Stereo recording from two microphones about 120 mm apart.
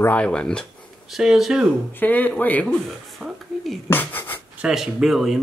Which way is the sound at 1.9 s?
15° left (ahead or behind).